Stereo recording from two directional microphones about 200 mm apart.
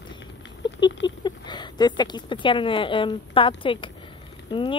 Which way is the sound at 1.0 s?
20° left (ahead or behind).